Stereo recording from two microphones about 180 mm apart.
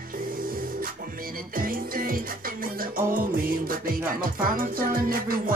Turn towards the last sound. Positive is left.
turn(degrees=-50)  # may be behind; listen again after turning